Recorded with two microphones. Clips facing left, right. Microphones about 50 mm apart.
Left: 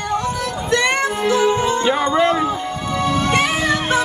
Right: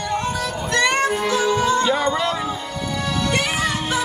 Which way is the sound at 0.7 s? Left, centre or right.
Left.